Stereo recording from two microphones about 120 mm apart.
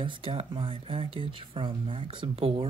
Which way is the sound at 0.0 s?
45° right (ahead or behind).